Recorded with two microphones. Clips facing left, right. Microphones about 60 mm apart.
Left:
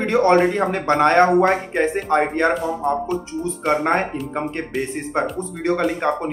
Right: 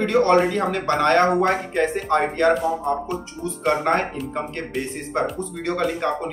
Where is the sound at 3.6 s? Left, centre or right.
Centre.